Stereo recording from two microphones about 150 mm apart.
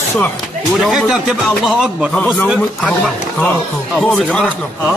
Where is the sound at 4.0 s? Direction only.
5° left (ahead or behind).